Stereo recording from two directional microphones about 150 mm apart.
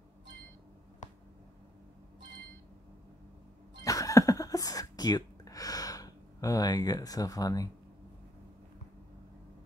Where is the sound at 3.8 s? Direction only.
20° left (ahead or behind).